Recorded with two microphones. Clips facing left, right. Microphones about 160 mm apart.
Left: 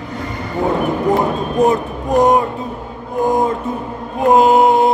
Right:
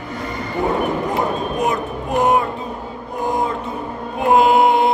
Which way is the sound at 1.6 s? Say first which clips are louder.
Left 5 dB; 40° left (ahead or behind).